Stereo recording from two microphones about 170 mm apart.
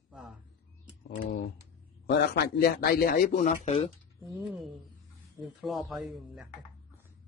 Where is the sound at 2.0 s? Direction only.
70° left (ahead or behind); by 3.9 s 40° left (ahead or behind).